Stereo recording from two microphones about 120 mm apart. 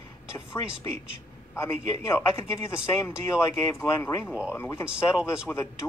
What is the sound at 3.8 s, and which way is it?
Speech, 20° left (ahead or behind).